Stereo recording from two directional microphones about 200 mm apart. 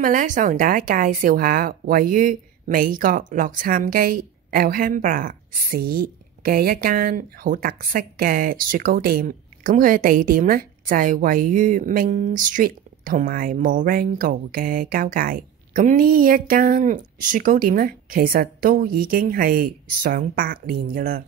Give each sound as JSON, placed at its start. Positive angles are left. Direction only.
{"t": 0.0, "sound": "a woman's voice", "side_deg": -40}